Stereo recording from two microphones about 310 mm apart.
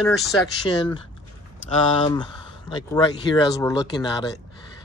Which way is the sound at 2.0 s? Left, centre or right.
Centre.